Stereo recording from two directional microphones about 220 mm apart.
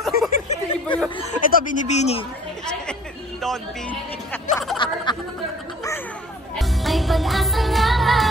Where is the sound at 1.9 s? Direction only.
30° left (ahead or behind).